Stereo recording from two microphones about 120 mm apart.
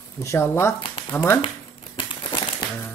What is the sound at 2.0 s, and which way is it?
Crumpling, 40° left (ahead or behind).